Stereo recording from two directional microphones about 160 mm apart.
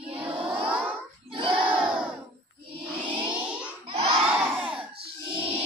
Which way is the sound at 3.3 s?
5° right (ahead or behind).